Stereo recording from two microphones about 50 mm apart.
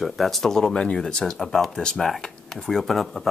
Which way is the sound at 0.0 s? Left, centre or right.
Centre.